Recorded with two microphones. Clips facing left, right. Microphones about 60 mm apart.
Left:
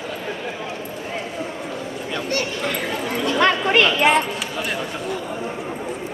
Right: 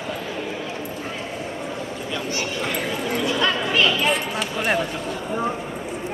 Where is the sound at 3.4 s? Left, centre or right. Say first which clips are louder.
Left 6 dB; left.